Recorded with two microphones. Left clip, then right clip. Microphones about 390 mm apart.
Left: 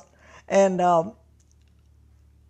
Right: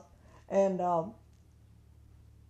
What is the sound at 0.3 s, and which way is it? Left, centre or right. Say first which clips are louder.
Speech: left 9 dB; left.